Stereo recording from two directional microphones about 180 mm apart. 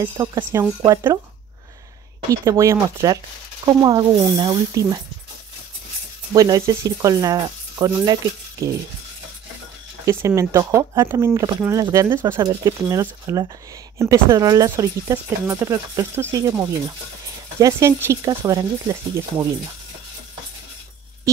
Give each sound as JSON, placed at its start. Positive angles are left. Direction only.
{"t": 0.0, "sound": "speech", "side_deg": -15}
{"t": 2.4, "sound": "speech", "side_deg": -15}
{"t": 6.3, "sound": "speech", "side_deg": -20}
{"t": 10.0, "sound": "speech", "side_deg": -15}